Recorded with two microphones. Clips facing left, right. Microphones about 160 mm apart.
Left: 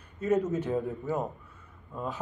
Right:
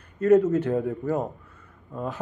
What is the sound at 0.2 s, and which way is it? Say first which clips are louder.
Speech: right 8 dB; 65° right (ahead or behind).